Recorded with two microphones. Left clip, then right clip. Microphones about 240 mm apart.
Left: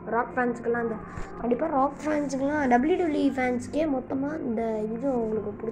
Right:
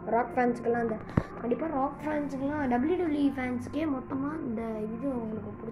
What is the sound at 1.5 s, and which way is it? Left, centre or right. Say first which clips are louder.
A woman's voice: left 7 dB; centre.